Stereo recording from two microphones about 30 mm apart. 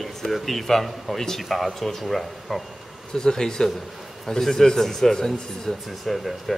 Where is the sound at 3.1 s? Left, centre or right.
Left.